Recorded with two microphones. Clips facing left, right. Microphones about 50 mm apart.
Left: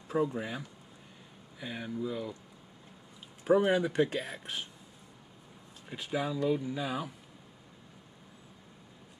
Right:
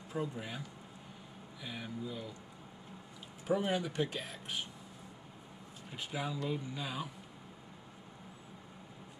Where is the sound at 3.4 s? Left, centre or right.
Left.